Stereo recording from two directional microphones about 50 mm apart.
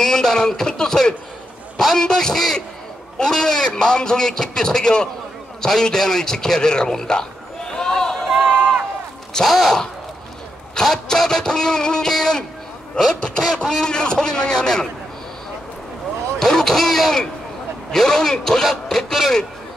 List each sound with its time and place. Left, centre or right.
0.0 s a man's voice: centre
7.7 s a sound: centre
8.3 s run: centre
9.3 s a man's voice: centre
16.3 s a man's voice: centre